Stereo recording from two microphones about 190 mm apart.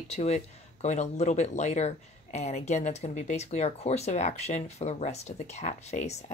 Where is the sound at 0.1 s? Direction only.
35° left (ahead or behind).